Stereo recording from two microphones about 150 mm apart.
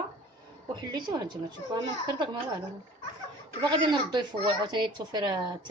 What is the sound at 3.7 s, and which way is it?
Speech, 30° right (ahead or behind).